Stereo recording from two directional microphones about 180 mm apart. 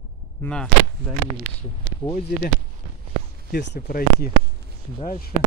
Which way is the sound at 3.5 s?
55° left (ahead or behind).